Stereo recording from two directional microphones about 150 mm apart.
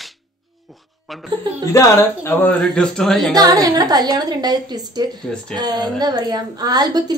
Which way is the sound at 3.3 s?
25° right (ahead or behind).